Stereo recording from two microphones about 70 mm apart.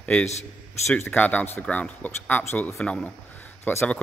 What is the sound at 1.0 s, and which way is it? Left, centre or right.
A man's voice, left.